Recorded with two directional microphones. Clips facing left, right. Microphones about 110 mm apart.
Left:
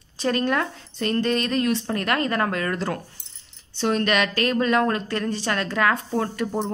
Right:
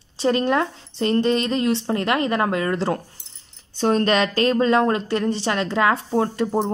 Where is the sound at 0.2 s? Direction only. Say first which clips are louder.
Right 3 dB; 20° right (ahead or behind).